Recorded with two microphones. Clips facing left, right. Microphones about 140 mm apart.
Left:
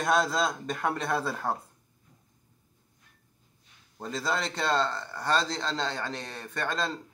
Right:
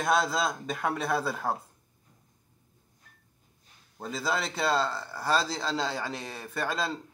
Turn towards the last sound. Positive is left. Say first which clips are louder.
# even
turn(degrees=-5)  # may be behind; listen again after turning